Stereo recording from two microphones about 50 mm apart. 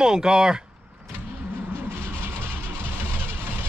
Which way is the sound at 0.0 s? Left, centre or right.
Centre.